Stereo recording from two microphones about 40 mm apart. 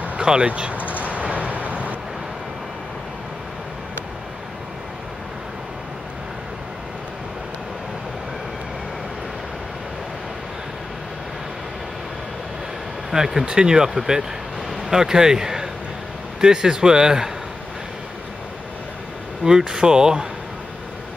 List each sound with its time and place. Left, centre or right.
0.2 s speech: right
1.0 s a sound: right
13.1 s a man's voice: centre
19.4 s speech: centre